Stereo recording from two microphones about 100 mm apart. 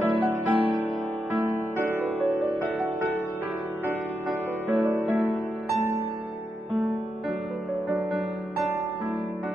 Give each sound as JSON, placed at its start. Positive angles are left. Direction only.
{"t": 0.0, "sound": "music", "side_deg": -15}